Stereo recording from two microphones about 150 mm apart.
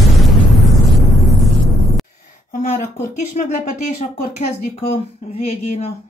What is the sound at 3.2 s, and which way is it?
Speech, 50° left (ahead or behind).